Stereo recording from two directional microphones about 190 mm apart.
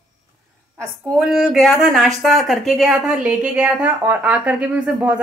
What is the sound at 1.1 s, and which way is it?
Speech, centre (ahead or behind).